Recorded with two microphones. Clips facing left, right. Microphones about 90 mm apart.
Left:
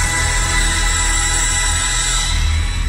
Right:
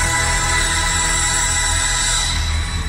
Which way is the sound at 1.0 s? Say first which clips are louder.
Right 1 dB; 15° right (ahead or behind).